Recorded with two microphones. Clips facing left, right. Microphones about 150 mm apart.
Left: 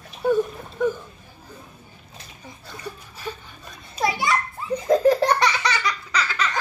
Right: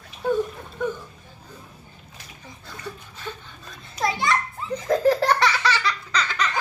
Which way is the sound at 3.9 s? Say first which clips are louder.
Left 1 dB; 5° left (ahead or behind).